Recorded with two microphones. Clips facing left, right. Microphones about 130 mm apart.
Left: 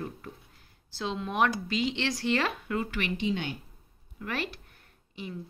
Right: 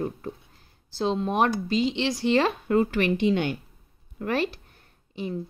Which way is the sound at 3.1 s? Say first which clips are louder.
Right 5 dB; 65° right (ahead or behind).